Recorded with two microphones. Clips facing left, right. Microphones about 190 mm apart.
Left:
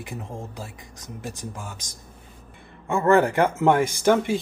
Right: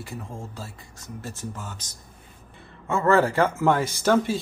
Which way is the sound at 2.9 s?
15° left (ahead or behind).